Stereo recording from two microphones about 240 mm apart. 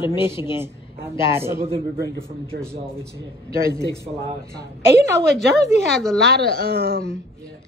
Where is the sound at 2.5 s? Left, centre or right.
Right.